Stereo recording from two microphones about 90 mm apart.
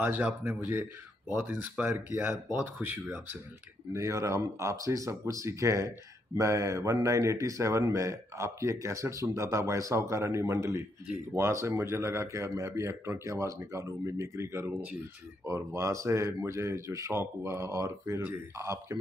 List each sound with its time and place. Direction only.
0.0 s speech: 20° right (ahead or behind)
3.9 s speech: 35° right (ahead or behind)
14.7 s speech: 15° right (ahead or behind)
15.4 s speech: 35° right (ahead or behind)